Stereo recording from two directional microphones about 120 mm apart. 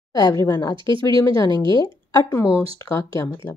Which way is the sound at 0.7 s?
40° right (ahead or behind).